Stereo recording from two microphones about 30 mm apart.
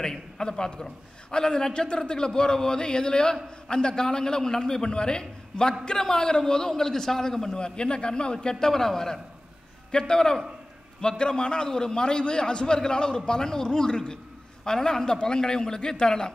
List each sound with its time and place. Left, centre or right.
0.4 s a man's voice: left
7.5 s a man's voice: left; by 9.2 s centre
9.8 s a man's voice: left